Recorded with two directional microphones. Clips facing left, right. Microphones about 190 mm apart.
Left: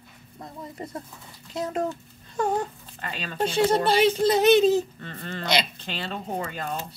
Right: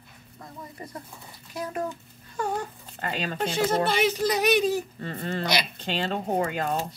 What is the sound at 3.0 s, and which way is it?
Speech, 45° right (ahead or behind).